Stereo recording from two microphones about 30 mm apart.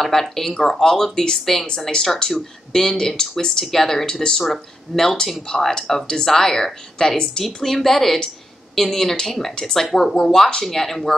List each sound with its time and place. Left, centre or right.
0.0 s speech: centre
1.9 s speech: left